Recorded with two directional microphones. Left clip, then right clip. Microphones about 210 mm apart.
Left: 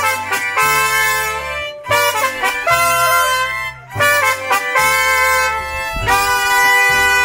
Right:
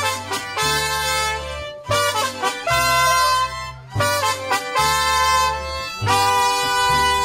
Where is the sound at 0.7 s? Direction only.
10° left (ahead or behind).